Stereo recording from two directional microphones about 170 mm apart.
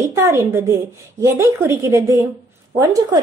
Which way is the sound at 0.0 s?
15° right (ahead or behind).